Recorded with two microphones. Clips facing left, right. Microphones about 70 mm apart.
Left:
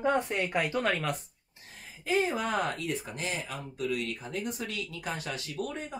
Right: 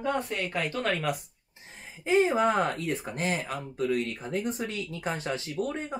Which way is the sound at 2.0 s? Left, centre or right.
Right.